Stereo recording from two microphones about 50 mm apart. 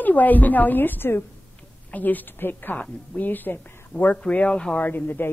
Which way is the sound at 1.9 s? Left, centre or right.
Left.